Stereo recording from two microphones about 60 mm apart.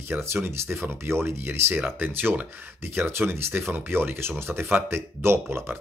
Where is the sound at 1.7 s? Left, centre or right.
Right.